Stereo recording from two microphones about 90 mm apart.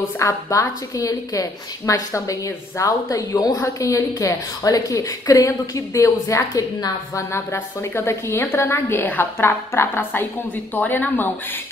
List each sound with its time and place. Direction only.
0.2 s a woman's voice: 35° left (ahead or behind)
7.3 s a woman's voice: 25° left (ahead or behind)